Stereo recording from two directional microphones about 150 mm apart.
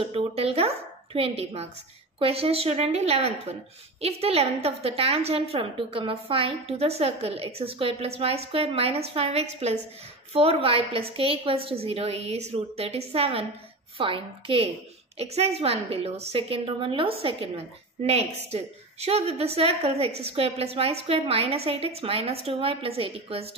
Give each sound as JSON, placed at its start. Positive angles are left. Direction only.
{"t": 0.0, "sound": "a woman's voice", "side_deg": -40}